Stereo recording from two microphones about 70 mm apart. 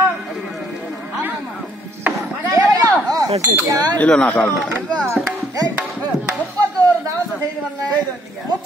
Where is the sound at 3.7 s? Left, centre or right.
Right.